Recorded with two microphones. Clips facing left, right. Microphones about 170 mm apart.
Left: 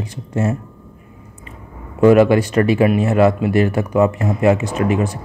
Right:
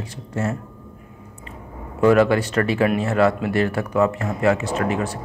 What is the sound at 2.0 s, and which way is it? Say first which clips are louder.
Speech: left 5 dB; 15° left (ahead or behind).